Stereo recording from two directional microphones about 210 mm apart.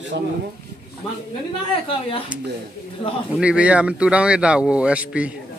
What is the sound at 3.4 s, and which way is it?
Speech, 5° right (ahead or behind).